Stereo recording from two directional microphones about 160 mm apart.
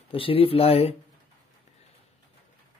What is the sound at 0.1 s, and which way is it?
Speech, 35° left (ahead or behind).